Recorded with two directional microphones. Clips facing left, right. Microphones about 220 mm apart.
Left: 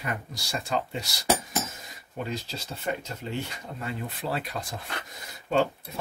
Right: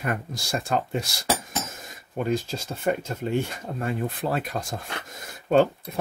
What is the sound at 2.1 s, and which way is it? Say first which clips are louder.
Speech: right 8 dB; 50° right (ahead or behind).